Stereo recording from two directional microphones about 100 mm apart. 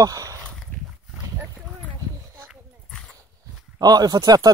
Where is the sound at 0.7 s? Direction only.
15° left (ahead or behind).